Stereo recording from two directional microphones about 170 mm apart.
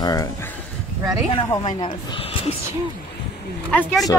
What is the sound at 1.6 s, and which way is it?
Speech, 35° left (ahead or behind).